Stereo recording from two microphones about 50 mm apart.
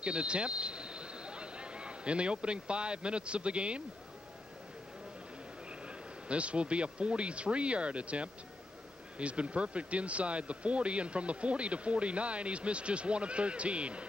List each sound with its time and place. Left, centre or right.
0.0 s speech: right
6.2 s speech: right